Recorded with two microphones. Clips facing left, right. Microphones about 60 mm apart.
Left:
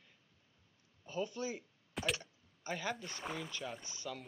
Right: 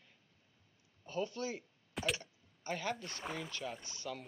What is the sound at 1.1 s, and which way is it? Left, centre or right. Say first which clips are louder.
Speech: right 1 dB; left.